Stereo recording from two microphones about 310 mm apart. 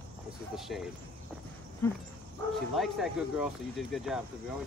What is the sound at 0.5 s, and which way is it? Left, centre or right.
Speech, centre.